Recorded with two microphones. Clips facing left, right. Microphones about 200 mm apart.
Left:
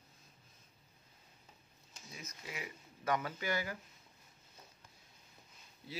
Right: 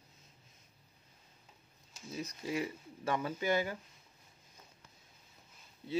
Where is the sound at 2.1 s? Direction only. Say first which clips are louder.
Right 11 dB; 30° right (ahead or behind).